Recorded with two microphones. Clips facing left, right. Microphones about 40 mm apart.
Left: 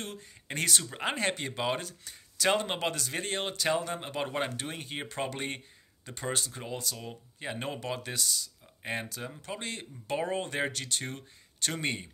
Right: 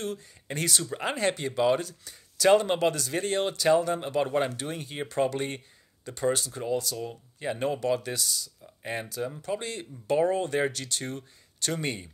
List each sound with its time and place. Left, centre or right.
0.0 s speech: left
0.8 s speech: centre
1.1 s speech: left